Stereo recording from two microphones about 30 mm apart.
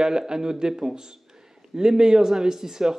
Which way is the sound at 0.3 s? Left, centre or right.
Right.